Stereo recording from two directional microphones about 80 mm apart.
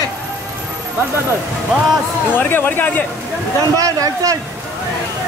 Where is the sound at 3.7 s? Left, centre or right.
Right.